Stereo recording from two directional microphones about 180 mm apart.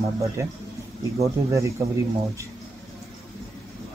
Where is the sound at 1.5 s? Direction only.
15° right (ahead or behind).